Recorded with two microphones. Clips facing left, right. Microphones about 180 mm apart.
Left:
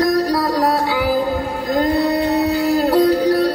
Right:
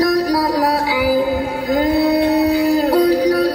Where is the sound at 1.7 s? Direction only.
Centre (ahead or behind).